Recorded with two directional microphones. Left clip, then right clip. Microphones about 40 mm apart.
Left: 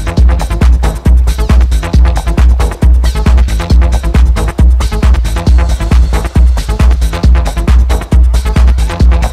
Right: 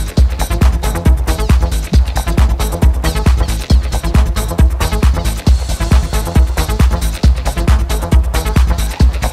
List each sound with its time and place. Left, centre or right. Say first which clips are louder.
0.1 s music: left 3 dB; left